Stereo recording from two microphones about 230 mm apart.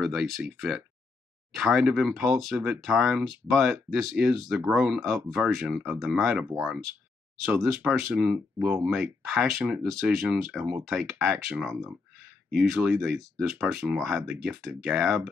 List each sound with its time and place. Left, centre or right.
0.0 s speech: centre